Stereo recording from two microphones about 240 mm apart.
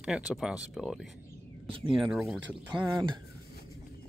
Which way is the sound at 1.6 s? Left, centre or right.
Right.